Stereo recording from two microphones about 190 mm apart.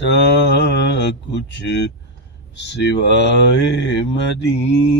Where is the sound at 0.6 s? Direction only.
65° left (ahead or behind).